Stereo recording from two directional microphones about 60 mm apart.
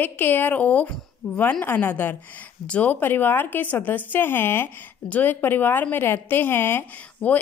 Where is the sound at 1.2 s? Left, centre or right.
Centre.